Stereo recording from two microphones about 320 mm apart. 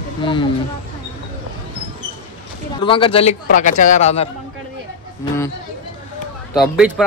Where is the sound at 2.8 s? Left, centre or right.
Centre.